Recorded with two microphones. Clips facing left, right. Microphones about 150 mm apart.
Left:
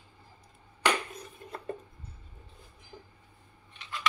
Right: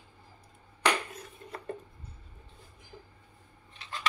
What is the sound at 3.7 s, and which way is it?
Scissors, 35° right (ahead or behind).